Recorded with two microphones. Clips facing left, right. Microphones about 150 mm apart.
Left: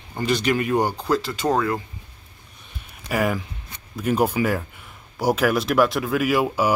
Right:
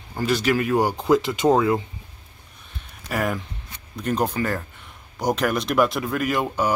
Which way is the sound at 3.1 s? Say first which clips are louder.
Left 2 dB; centre (ahead or behind).